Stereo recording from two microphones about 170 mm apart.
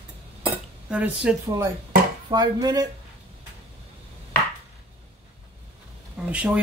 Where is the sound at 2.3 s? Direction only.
25° right (ahead or behind).